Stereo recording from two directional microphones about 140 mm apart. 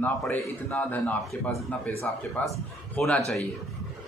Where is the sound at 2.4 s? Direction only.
10° left (ahead or behind).